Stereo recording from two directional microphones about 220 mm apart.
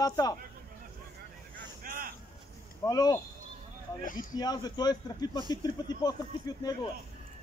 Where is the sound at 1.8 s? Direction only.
40° right (ahead or behind).